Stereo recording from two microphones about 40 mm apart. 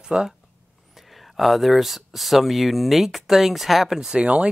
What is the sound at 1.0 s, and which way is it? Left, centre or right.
Speech, centre.